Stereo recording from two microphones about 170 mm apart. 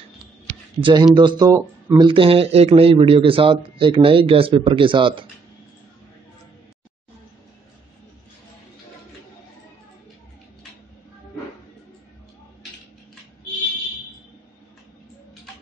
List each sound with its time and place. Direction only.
0.7 s speech: 30° right (ahead or behind)